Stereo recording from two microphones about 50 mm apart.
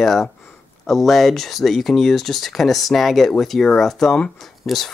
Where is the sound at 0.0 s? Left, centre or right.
Centre.